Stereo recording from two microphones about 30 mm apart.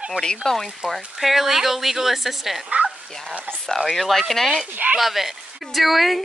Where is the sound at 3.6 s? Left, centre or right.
Centre.